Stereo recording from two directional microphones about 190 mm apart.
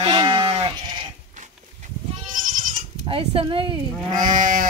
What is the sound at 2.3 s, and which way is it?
Goat, 45° right (ahead or behind).